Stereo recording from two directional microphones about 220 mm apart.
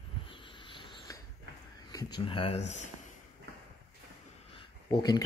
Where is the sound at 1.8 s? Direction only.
20° left (ahead or behind).